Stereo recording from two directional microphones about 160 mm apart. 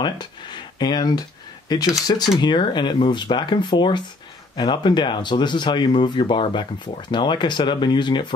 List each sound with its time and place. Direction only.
0.0 s speech: 30° left (ahead or behind)